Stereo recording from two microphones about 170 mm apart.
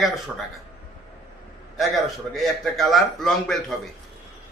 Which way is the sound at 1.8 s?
Centre (ahead or behind).